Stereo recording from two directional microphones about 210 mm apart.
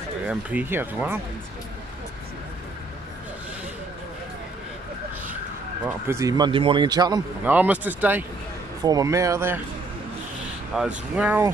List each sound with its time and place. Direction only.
0.3 s speech: 5° right (ahead or behind)
6.0 s speech: 15° right (ahead or behind)
7.5 s speech: 5° right (ahead or behind)
10.8 s speech: 5° right (ahead or behind)